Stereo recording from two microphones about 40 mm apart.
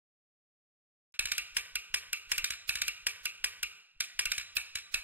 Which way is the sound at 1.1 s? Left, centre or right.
Right.